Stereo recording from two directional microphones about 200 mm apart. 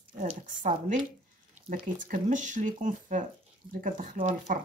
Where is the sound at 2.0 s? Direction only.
40° right (ahead or behind).